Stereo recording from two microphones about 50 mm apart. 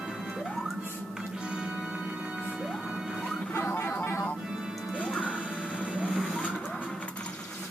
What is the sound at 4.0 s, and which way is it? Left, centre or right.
Music, left.